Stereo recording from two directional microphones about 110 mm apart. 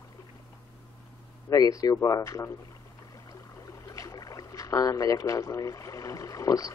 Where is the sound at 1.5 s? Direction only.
30° left (ahead or behind).